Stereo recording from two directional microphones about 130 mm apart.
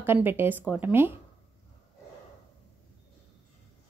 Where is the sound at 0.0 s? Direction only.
15° right (ahead or behind).